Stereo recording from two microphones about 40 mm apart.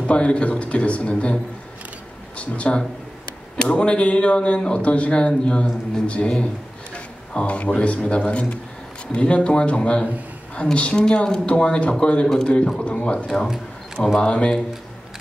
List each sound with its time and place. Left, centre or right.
0.0 s speech: left
7.3 s speech: left
12.3 s a man's voice: centre
14.2 s speech: left